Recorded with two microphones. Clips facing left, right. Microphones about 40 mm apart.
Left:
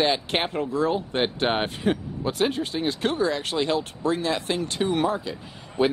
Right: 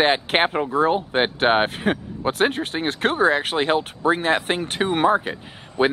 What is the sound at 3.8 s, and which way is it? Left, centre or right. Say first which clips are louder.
Speech: right 4 dB; right.